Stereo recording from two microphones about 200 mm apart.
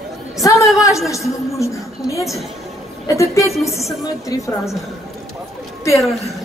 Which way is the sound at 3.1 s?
15° left (ahead or behind).